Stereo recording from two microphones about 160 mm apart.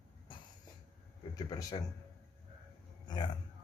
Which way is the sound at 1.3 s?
25° left (ahead or behind).